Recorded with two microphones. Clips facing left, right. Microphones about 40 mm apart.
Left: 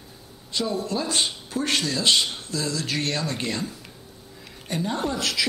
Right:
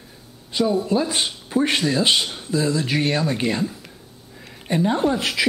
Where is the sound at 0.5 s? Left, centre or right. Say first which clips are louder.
Right 7 dB; centre.